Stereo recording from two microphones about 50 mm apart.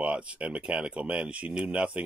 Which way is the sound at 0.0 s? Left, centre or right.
Right.